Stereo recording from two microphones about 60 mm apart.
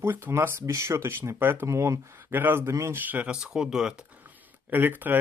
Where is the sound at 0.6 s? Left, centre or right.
Right.